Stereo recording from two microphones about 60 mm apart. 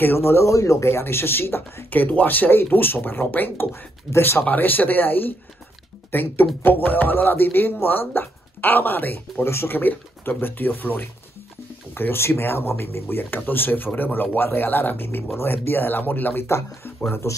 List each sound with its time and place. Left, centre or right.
0.0 s speech: left
16.4 s speech: left